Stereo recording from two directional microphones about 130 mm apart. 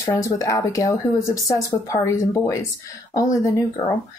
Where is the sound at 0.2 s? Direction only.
25° left (ahead or behind).